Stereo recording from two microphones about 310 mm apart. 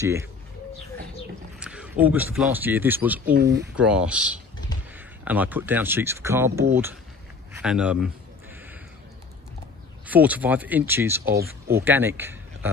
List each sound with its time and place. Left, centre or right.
0.0 s speech: centre
1.6 s a sound: centre
2.3 s speech: centre
3.3 s speech: right
3.7 s speech: centre
10.0 s speech: centre
11.4 s speech: right
11.8 s speech: centre